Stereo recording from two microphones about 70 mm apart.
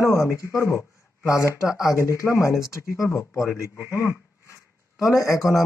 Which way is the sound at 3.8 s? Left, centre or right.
Left.